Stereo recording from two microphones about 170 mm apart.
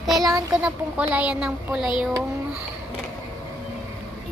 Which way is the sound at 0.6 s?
10° right (ahead or behind).